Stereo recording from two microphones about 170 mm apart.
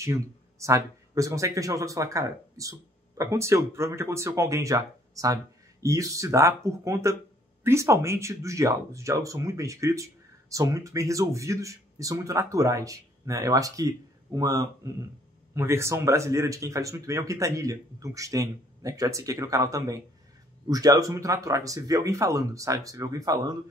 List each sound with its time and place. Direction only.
0.0 s speech: 15° right (ahead or behind)